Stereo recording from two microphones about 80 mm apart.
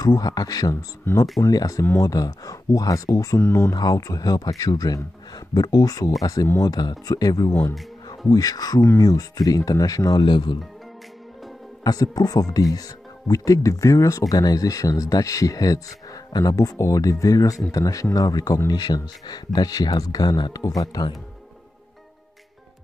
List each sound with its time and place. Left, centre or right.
0.0 s a man's voice: left
3.3 s speech: left
3.7 s a man's voice: left
10.2 s speech: left
11.8 s a man's voice: left
20.6 s a man's voice: left